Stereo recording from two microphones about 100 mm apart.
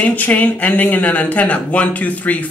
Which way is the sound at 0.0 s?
15° left (ahead or behind).